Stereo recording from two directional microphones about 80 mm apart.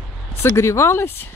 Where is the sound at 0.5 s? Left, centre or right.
Left.